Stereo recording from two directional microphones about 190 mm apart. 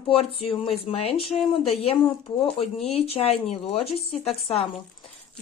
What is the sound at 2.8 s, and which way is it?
Speech, 30° left (ahead or behind).